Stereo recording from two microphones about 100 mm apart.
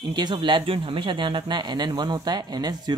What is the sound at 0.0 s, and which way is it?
Speech, 50° right (ahead or behind).